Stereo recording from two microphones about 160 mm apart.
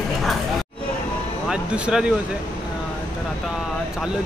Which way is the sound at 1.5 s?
5° right (ahead or behind).